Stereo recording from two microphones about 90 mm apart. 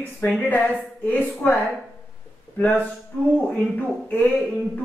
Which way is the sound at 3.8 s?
15° left (ahead or behind).